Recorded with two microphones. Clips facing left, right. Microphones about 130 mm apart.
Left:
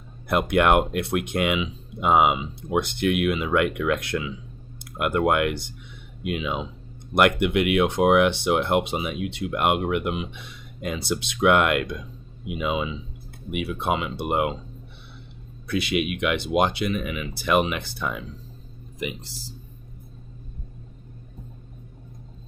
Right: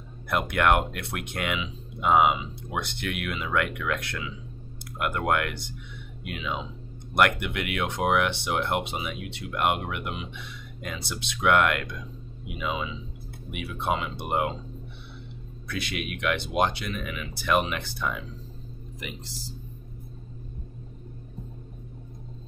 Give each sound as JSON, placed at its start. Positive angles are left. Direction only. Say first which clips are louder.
{"t": 0.3, "sound": "speech", "louder": "left 4 dB", "side_deg": 20}
{"t": 15.7, "sound": "speech", "louder": "left 8 dB", "side_deg": 15}